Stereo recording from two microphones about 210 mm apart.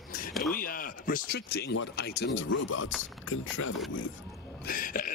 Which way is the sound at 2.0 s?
50° left (ahead or behind).